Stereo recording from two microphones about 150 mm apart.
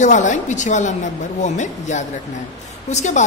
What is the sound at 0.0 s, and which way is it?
A woman's voice, 55° left (ahead or behind).